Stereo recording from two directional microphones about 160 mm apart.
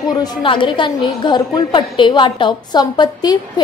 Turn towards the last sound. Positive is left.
turn(degrees=25)  # may be behind; listen again after turning